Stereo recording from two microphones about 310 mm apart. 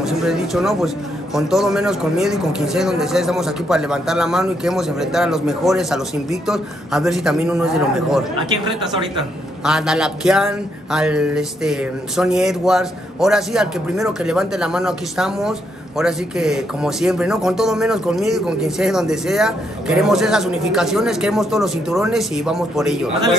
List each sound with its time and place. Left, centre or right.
0.0 s a man's voice: centre
9.6 s a man's voice: centre